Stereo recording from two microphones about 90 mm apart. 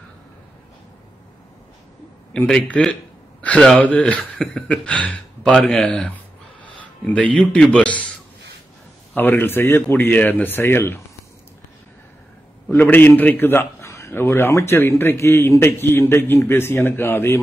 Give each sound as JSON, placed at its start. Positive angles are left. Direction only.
{"t": 2.4, "sound": "a man's voice", "side_deg": 5}
{"t": 6.1, "sound": "a sound", "side_deg": 15}
{"t": 9.1, "sound": "a man's voice", "side_deg": 20}
{"t": 12.6, "sound": "a man's voice", "side_deg": 20}